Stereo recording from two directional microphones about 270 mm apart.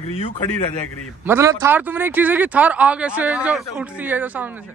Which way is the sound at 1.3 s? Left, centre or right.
Centre.